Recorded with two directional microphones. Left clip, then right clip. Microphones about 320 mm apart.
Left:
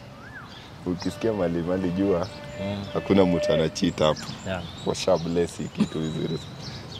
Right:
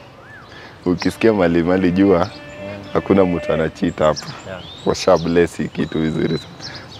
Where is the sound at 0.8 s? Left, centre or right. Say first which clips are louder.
Right 11 dB; right.